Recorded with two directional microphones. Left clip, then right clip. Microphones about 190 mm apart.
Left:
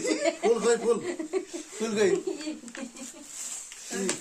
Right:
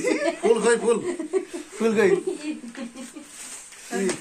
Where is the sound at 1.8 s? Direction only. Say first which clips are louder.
Right 6 dB; 10° right (ahead or behind).